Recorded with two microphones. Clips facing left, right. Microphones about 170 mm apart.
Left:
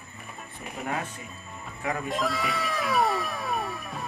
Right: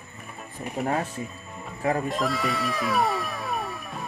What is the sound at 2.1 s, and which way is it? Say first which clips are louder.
Cat: right 2 dB; centre (ahead or behind).